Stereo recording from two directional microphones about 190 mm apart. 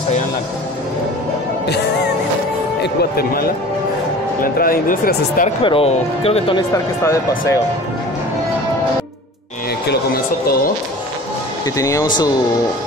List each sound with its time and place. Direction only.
1.7 s music: 60° left (ahead or behind)
2.8 s speech: 55° left (ahead or behind)
5.6 s speech: 30° left (ahead or behind)
6.7 s speech: 15° left (ahead or behind)
9.8 s speech: 55° left (ahead or behind)
11.6 s speech: 15° left (ahead or behind)